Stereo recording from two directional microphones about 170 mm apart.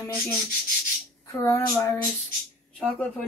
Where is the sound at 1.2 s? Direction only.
20° left (ahead or behind).